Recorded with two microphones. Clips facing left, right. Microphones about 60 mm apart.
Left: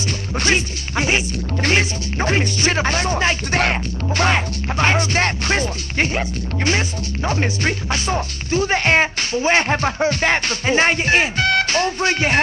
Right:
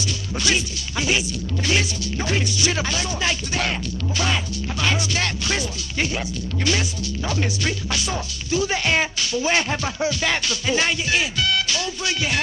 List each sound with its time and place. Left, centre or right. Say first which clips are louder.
0.4 s music: left 4 dB; left
1.6 s speech: left 4 dB; left